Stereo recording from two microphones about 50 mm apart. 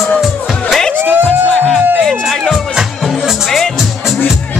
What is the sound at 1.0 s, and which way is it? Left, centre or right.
Music, right.